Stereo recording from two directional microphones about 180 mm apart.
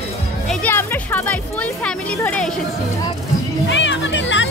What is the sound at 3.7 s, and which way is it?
Music, 85° left.